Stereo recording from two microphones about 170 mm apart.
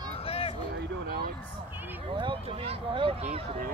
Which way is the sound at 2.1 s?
30° right (ahead or behind).